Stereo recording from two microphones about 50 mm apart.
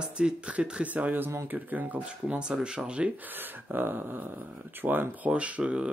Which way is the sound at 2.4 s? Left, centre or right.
Centre.